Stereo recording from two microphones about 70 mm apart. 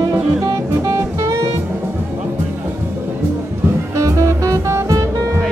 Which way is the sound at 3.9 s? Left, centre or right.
Right.